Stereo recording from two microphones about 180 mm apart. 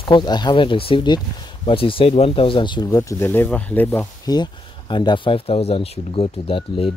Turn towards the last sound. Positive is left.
turn(degrees=30)  # may be behind; listen again after turning